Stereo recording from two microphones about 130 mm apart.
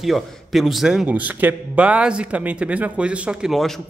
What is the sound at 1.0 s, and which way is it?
Speech, 10° right (ahead or behind).